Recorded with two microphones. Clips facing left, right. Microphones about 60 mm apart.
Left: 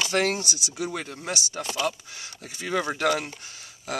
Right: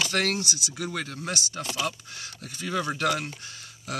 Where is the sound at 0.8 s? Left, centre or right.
Centre.